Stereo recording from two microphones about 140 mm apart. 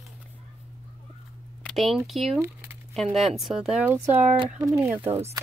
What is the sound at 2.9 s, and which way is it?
Speech, centre (ahead or behind).